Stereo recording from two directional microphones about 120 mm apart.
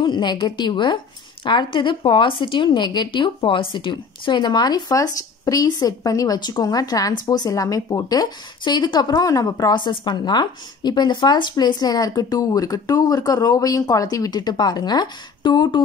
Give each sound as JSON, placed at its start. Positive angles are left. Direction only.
{"t": 0.0, "sound": "a woman's voice", "side_deg": 40}